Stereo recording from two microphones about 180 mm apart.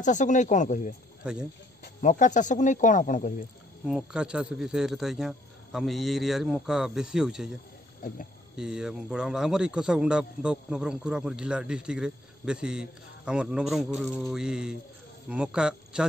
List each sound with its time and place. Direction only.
0.0 s speech: 45° left (ahead or behind)
1.2 s speech: 5° right (ahead or behind)
2.0 s speech: 45° left (ahead or behind)
3.8 s a man's voice: 5° right (ahead or behind)
8.5 s a man's voice: 5° right (ahead or behind)